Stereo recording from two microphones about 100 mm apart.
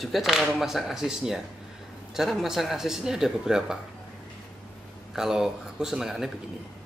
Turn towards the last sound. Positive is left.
turn(degrees=-5)  # may be behind; listen again after turning